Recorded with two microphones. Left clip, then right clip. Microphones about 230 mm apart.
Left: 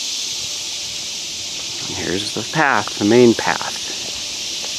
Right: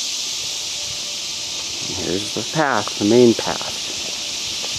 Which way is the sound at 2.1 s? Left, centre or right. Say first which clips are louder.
Left 2 dB; centre.